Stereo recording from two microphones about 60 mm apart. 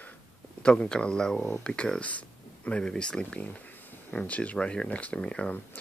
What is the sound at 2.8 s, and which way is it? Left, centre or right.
Speech, centre.